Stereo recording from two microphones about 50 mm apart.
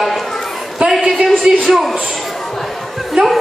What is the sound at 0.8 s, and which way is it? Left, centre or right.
A woman's voice, centre.